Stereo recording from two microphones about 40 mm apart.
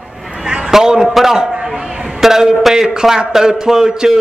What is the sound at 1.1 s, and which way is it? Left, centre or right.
Speech, centre.